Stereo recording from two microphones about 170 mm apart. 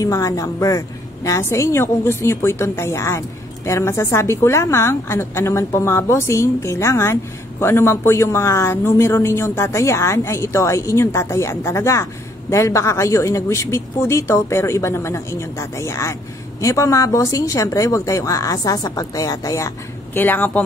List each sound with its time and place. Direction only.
0.0 s speech: 20° left (ahead or behind)